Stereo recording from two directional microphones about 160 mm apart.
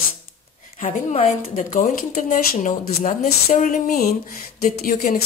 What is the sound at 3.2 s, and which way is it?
Speech, 55° left (ahead or behind).